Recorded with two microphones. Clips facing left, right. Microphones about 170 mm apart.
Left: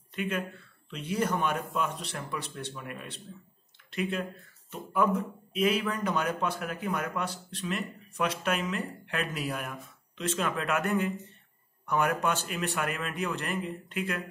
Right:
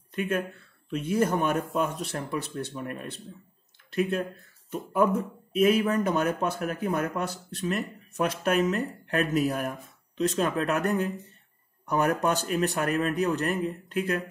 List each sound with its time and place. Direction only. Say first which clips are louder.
0.1 s a man's voice: right 4 dB; 45° right (ahead or behind)